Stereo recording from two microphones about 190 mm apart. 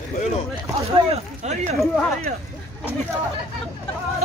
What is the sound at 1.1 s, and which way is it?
Speech, 35° right (ahead or behind).